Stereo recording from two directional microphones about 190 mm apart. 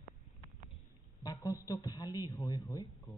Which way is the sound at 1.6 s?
20° left (ahead or behind).